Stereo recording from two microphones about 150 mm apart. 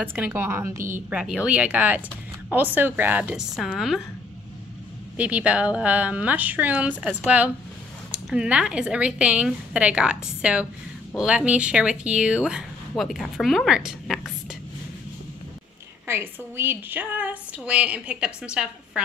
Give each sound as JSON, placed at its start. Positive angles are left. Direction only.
{"t": 0.1, "sound": "a woman's voice", "side_deg": -15}
{"t": 1.2, "sound": "a woman's voice", "side_deg": -5}
{"t": 5.1, "sound": "a woman's voice", "side_deg": -10}
{"t": 16.1, "sound": "a woman's voice", "side_deg": -15}